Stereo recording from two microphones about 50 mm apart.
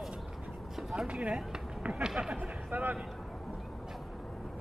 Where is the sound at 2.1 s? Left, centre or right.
Centre.